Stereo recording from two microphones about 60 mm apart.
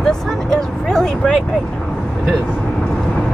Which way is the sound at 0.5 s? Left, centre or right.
Centre.